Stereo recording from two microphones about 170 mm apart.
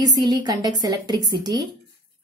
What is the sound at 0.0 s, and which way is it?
A woman's voice, 25° right (ahead or behind).